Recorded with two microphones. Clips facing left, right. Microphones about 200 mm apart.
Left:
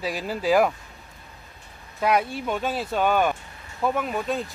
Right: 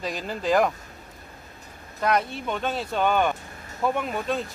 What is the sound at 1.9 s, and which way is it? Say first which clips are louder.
Speech: left 2 dB; 10° left (ahead or behind).